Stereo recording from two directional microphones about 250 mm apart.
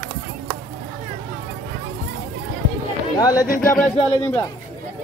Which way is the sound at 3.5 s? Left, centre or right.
Centre.